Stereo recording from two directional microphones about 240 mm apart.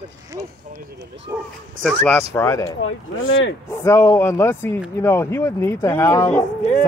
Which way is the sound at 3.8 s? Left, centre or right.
Centre.